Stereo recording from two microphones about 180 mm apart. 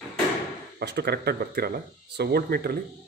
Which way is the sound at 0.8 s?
65° right (ahead or behind).